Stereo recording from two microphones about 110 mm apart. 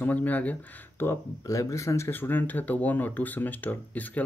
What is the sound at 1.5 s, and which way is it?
Speech, 30° left (ahead or behind).